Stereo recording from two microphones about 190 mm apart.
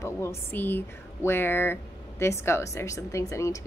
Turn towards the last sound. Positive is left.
turn(degrees=15)  # may be behind; listen again after turning